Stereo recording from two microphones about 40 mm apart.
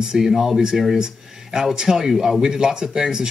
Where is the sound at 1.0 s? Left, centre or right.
Centre.